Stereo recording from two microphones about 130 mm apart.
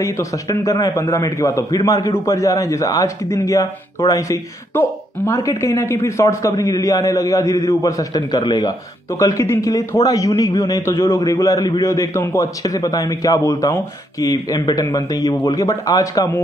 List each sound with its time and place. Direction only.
0.0 s a man's voice: 25° left (ahead or behind)